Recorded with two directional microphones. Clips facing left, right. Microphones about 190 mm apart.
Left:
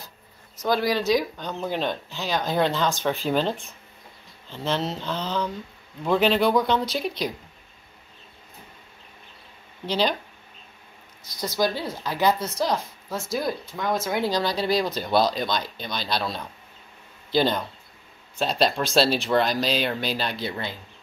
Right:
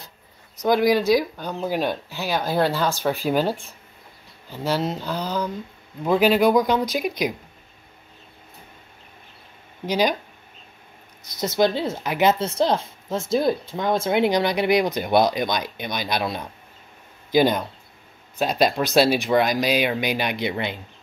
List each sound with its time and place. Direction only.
0.6 s speech: 15° right (ahead or behind)
4.6 s speech: 10° right (ahead or behind)
9.8 s speech: 15° right (ahead or behind)
11.3 s a woman's voice: 25° right (ahead or behind)